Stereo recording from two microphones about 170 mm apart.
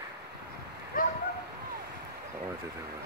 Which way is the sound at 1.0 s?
55° left (ahead or behind).